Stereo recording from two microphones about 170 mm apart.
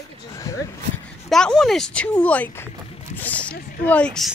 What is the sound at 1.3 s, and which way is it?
Speech, 5° left (ahead or behind).